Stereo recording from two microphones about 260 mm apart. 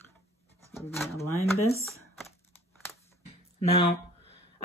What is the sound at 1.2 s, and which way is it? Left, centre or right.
Speech, centre.